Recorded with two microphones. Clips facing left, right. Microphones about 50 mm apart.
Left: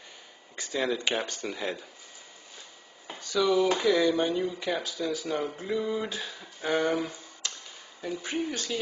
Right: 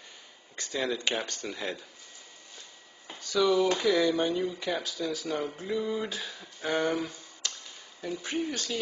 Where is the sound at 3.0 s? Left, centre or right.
Left.